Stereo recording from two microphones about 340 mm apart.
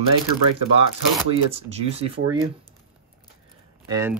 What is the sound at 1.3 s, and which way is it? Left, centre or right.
Speech, centre.